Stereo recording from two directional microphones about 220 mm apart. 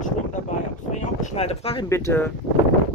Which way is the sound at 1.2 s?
30° left (ahead or behind).